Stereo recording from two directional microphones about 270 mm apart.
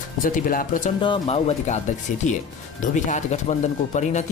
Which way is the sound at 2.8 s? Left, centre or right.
Left.